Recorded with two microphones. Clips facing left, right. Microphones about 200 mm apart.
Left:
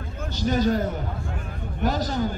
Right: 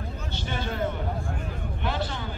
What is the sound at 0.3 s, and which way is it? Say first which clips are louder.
A man's voice: left 11 dB; 40° left (ahead or behind).